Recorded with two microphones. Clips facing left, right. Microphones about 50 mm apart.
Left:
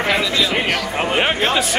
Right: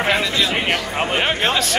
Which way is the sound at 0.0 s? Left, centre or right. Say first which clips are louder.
Left 1 dB; right.